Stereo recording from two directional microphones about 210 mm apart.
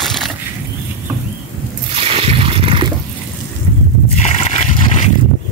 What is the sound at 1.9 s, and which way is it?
Toilet flush, 25° right (ahead or behind).